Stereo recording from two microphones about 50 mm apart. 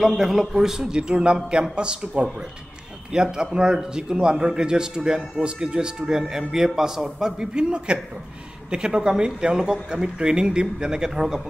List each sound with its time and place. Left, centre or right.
0.2 s a man's voice: centre